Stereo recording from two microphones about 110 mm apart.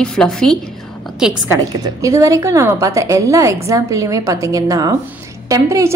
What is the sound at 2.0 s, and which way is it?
A woman's voice, 30° right (ahead or behind).